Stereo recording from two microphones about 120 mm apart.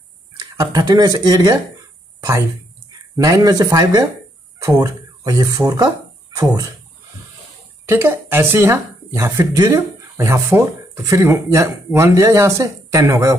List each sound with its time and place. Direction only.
0.4 s speech: 35° right (ahead or behind)
3.3 s speech: 30° right (ahead or behind)
7.9 s speech: 20° right (ahead or behind)